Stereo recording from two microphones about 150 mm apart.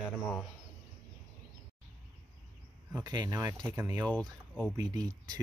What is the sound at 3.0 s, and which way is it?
Speech, 25° right (ahead or behind).